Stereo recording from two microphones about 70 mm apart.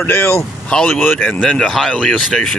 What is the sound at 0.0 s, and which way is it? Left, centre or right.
Speech, left.